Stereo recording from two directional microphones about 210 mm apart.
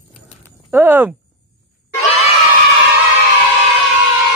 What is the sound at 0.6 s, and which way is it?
Speech, 10° right (ahead or behind).